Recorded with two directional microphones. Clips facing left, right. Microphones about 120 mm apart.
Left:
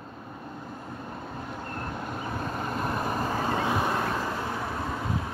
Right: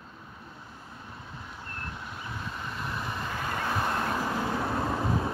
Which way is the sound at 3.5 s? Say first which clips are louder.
Left 1 dB; 15° left (ahead or behind).